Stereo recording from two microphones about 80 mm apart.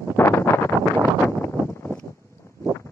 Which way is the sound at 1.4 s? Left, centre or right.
Left.